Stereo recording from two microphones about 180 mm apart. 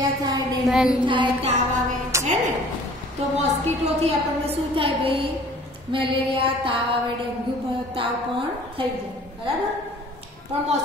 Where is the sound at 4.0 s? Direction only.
30° right (ahead or behind).